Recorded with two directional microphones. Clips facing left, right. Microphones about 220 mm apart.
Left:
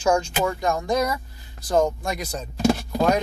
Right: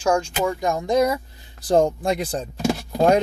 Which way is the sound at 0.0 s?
10° right (ahead or behind).